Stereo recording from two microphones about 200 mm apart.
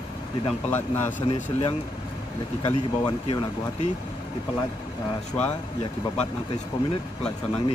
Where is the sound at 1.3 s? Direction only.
30° left (ahead or behind).